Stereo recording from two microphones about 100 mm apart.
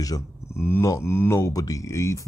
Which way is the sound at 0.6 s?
25° left (ahead or behind).